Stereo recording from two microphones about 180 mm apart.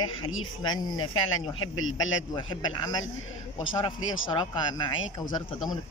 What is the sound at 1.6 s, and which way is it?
Speech, 90° left.